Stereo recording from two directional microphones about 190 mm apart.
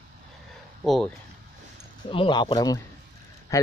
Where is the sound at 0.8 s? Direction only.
Centre (ahead or behind).